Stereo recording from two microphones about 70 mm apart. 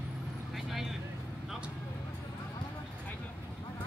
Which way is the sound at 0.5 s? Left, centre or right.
Centre.